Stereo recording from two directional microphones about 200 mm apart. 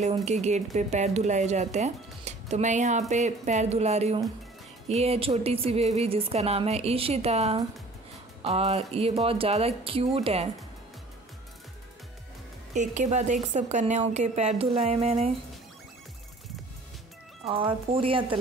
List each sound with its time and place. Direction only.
0.0 s a woman's voice: 35° right (ahead or behind)
12.7 s speech: 35° right (ahead or behind)
17.5 s a woman's voice: 25° right (ahead or behind)